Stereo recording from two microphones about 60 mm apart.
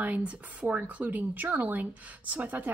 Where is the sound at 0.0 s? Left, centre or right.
Right.